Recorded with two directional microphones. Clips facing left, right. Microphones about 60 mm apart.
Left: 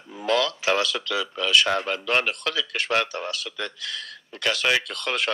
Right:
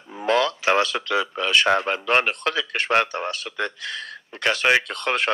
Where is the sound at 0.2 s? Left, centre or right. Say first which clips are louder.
Right 3 dB; right.